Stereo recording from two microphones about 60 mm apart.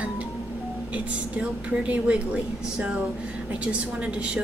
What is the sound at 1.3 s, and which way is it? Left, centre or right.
A woman's voice, right.